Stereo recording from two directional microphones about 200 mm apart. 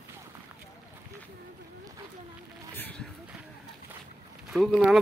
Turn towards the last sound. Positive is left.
turn(degrees=0)  # may be behind; listen again after turning